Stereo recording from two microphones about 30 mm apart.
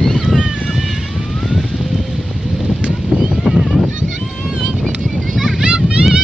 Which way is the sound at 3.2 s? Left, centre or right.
Centre.